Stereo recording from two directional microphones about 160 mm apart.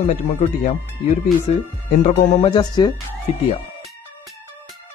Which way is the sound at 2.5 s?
25° left (ahead or behind).